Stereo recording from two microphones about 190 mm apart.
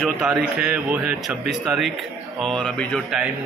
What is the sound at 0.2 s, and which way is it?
Speech, 5° right (ahead or behind).